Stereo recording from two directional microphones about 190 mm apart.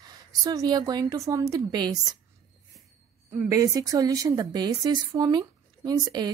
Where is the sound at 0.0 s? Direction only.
20° right (ahead or behind).